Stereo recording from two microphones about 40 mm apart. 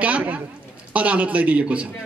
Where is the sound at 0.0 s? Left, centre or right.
Right.